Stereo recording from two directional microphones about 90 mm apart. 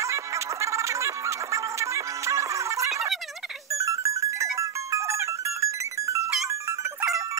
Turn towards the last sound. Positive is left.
turn(degrees=-35)  # may be behind; listen again after turning